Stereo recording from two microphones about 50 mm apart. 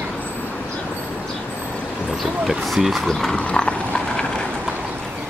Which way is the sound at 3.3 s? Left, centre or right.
Centre.